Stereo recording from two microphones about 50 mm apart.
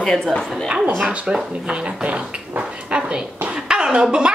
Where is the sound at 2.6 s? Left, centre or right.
Right.